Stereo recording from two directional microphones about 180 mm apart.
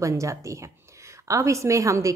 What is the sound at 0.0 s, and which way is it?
A woman's voice, 15° right (ahead or behind).